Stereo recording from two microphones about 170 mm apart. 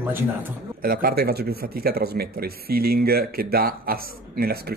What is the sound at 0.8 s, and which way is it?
Speech, 60° right (ahead or behind).